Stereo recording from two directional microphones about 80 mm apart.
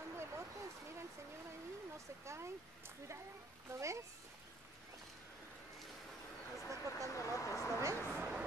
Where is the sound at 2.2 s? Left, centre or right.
Right.